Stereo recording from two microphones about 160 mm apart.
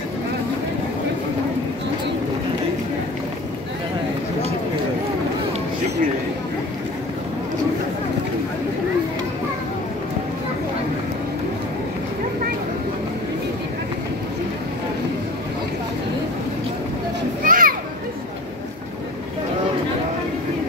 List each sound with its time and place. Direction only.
17.4 s children playing: 60° right (ahead or behind)